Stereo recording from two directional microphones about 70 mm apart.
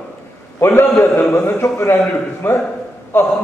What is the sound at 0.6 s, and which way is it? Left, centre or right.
A man's voice, left.